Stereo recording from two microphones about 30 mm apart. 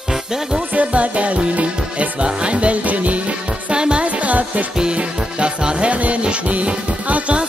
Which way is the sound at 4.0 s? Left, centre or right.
Right.